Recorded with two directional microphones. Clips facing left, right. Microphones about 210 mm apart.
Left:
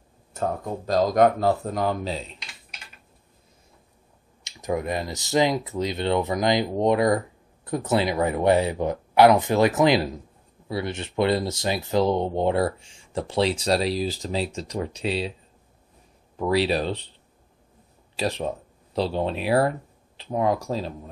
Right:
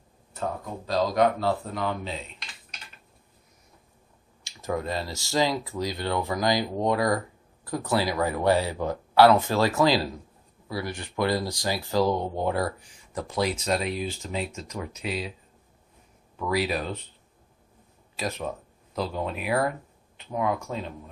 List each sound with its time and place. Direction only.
0.8 s speech: 45° left (ahead or behind)
4.5 s speech: 15° left (ahead or behind)
16.3 s speech: 30° left (ahead or behind)
18.1 s speech: 30° left (ahead or behind)